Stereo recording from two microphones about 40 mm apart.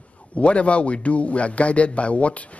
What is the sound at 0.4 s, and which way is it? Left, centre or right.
A man's voice, left.